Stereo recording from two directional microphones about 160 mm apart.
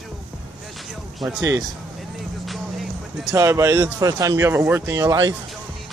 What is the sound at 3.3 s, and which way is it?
Speech, 20° right (ahead or behind).